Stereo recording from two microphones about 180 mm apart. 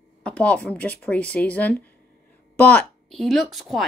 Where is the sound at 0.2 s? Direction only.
5° left (ahead or behind).